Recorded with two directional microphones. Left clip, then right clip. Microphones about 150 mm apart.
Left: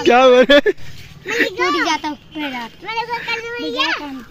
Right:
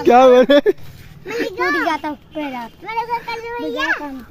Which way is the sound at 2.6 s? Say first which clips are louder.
Even; 5° left (ahead or behind).